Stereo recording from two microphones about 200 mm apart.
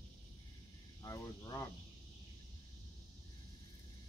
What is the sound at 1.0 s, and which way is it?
Speech, 15° left (ahead or behind).